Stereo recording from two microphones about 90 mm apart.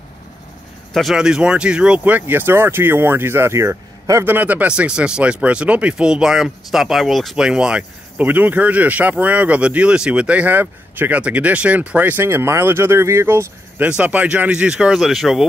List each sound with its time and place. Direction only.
0.9 s speech: 5° right (ahead or behind); by 13.8 s 30° right (ahead or behind)
13.8 s speech: 15° right (ahead or behind)